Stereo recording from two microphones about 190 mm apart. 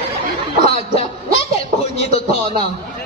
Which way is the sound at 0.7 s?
35° left (ahead or behind).